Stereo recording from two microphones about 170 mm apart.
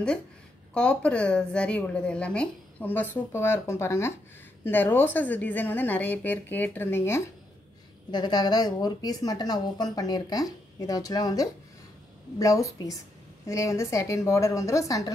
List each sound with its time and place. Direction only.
0.7 s a woman's voice: 5° left (ahead or behind)